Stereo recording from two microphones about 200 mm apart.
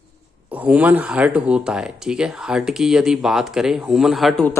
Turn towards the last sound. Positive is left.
turn(degrees=0)  # may be behind; listen again after turning